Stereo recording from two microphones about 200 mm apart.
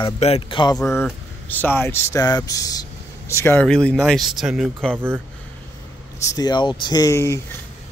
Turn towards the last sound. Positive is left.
turn(degrees=15)  # may be behind; listen again after turning